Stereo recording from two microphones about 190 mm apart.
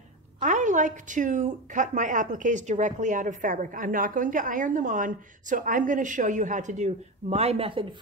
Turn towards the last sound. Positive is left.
turn(degrees=-25)  # may be behind; listen again after turning